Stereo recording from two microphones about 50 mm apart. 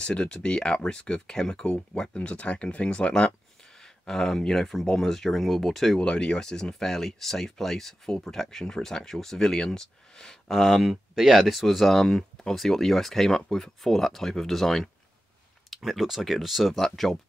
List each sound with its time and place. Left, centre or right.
0.0 s speech: left
3.8 s a sound: centre
4.4 s speech: centre
5.9 s speech: centre
15.7 s speech: centre